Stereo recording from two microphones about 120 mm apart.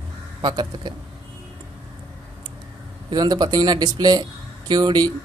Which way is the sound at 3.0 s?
35° right (ahead or behind).